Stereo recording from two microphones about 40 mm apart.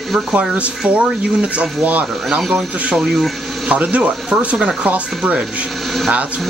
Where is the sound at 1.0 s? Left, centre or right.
Right.